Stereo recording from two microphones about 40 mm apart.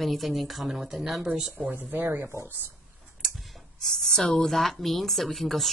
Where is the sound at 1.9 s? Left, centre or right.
Right.